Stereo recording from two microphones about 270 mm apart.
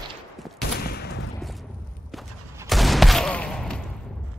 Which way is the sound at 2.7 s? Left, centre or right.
Centre.